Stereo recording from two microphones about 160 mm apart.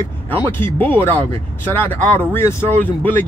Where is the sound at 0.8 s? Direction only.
10° left (ahead or behind).